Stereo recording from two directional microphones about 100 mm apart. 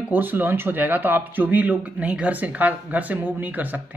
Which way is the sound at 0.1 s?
20° right (ahead or behind).